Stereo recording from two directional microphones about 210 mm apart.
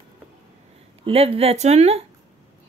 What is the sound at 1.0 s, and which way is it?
Speech, 25° right (ahead or behind).